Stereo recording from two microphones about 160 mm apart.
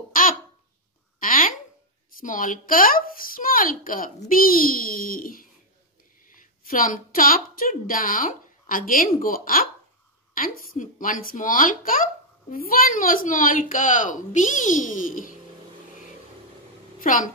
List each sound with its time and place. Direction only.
0.1 s babbling: 60° left (ahead or behind)
1.2 s a sound: 60° left (ahead or behind)
2.1 s a woman's voice: 60° left (ahead or behind)
17.0 s a woman's voice: 60° left (ahead or behind)